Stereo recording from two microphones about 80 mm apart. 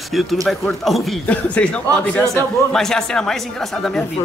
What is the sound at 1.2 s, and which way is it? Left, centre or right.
Speech, centre.